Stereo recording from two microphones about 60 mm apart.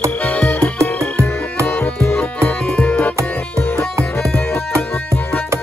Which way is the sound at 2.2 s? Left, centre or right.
Centre.